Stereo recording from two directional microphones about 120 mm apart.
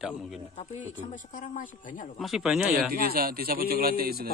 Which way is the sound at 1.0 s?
90° left.